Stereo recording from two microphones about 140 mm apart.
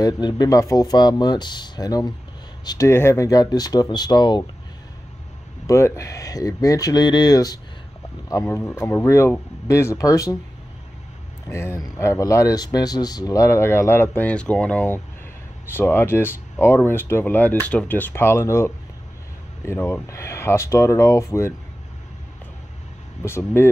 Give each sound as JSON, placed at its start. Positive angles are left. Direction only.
{"t": 0.0, "sound": "speech", "side_deg": 30}
{"t": 2.9, "sound": "speech", "side_deg": 20}
{"t": 5.7, "sound": "speech", "side_deg": 20}
{"t": 11.4, "sound": "speech", "side_deg": 20}
{"t": 23.2, "sound": "speech", "side_deg": 20}